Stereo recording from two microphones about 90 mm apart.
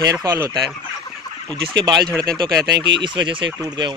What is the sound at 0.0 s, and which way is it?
Speech, 40° right (ahead or behind).